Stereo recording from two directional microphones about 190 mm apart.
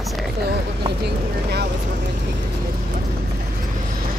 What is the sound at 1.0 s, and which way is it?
Speech, 60° right (ahead or behind).